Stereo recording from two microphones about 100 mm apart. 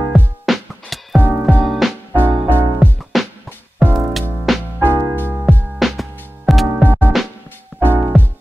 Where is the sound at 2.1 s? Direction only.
20° right (ahead or behind).